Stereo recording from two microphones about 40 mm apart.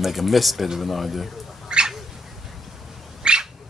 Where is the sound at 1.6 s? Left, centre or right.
Centre.